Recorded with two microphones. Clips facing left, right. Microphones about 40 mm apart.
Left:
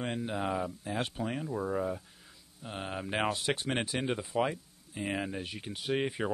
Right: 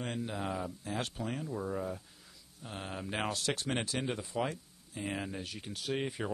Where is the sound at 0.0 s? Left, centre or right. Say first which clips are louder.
Left 3 dB; centre.